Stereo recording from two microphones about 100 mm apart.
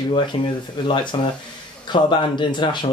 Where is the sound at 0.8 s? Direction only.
50° left (ahead or behind).